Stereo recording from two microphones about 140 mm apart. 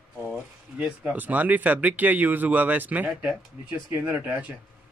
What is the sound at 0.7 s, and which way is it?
Speech, 10° right (ahead or behind).